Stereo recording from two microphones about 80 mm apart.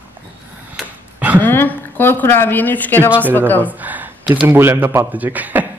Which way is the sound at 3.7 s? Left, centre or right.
Right.